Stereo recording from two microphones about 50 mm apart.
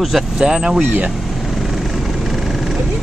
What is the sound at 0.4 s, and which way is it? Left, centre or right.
Speech, centre.